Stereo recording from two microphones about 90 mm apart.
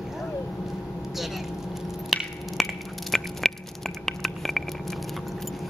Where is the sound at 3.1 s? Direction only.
5° left (ahead or behind).